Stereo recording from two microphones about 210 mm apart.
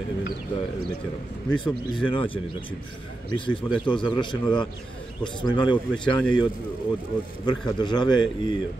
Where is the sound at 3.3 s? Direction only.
25° left (ahead or behind).